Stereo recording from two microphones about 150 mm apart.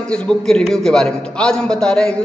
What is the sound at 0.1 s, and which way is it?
A man's voice, 5° left (ahead or behind).